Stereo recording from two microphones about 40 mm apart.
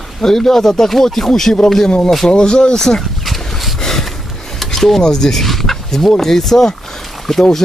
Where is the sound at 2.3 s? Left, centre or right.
Centre.